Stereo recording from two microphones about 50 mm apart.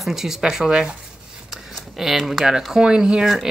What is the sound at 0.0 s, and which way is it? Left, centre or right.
Speech, centre.